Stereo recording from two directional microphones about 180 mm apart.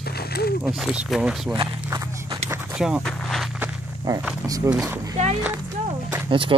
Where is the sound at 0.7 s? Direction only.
Centre (ahead or behind).